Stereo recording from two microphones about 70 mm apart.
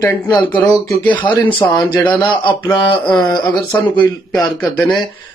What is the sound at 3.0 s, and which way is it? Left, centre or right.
Speech, left.